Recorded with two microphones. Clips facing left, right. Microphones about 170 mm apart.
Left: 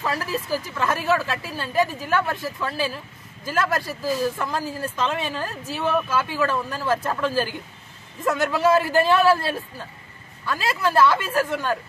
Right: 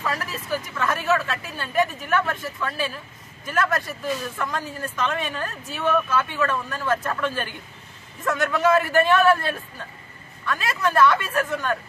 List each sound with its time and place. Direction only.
0.0 s a man's voice: 30° left (ahead or behind)